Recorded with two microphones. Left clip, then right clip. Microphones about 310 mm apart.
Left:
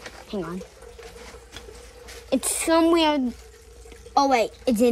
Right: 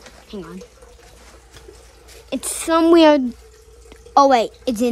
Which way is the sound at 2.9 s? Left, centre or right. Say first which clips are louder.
Right 9 dB; centre.